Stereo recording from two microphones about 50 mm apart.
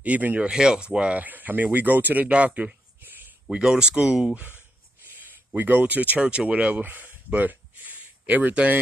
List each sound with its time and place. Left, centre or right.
0.0 s speech: right
0.5 s speech: centre
1.2 s speech: right
3.5 s speech: centre
4.4 s a sound: right
5.6 s speech: right
7.3 s a sound: right